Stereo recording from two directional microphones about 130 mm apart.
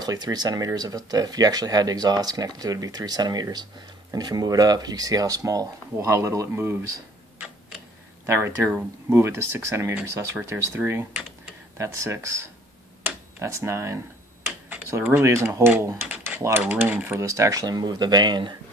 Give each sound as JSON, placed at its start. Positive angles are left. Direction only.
{"t": 0.0, "sound": "speech", "side_deg": -30}
{"t": 8.3, "sound": "speech", "side_deg": -20}
{"t": 13.0, "sound": "tick-tock", "side_deg": -20}
{"t": 14.9, "sound": "speech", "side_deg": -20}